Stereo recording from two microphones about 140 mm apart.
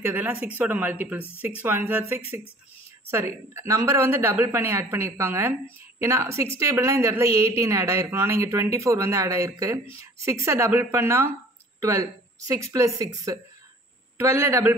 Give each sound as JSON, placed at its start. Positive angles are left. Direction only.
{"t": 0.0, "sound": "a woman's voice", "side_deg": -15}